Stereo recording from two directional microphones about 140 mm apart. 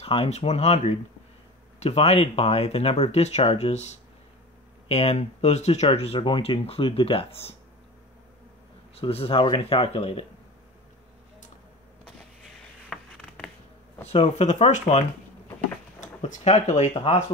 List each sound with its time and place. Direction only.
0.0 s speech: 45° left (ahead or behind)
8.9 s speech: 45° left (ahead or behind)
12.9 s a sound: 5° left (ahead or behind)
14.0 s speech: 50° left (ahead or behind)